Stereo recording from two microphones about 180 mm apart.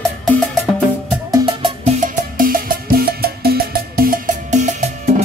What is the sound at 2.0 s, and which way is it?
Music, 50° right (ahead or behind).